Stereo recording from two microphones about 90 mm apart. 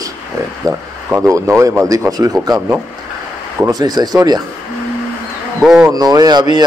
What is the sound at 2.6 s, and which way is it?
Speech, 25° right (ahead or behind).